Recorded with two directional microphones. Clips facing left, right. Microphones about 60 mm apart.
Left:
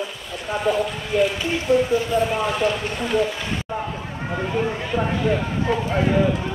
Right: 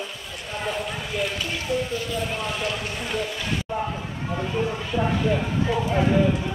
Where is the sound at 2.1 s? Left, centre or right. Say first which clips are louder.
Left 9 dB; left.